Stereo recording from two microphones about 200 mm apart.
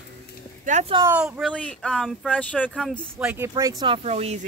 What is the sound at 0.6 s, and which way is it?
Speech, 35° right (ahead or behind).